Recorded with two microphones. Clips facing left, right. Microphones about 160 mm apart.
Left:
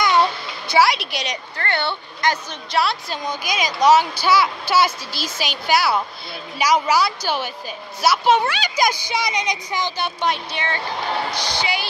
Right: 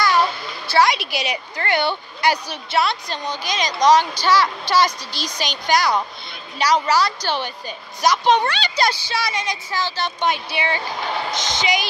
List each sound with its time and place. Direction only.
0.7 s a woman's voice: centre (ahead or behind)
2.8 s speech: 5° left (ahead or behind)
10.2 s a woman's voice: 5° right (ahead or behind)
11.3 s a woman's voice: 20° right (ahead or behind)